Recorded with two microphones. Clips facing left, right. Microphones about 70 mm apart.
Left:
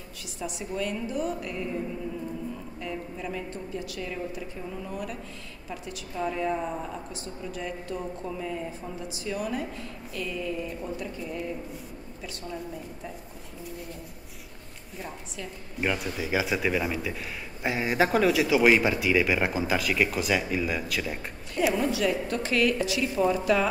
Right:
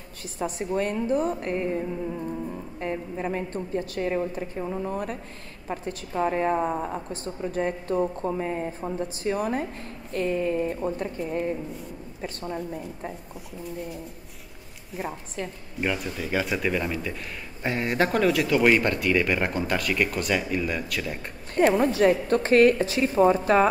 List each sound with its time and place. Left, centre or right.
0.4 s a woman's voice: right
2.8 s a woman's voice: right
13.7 s speech: centre
15.8 s speech: centre
21.5 s a woman's voice: right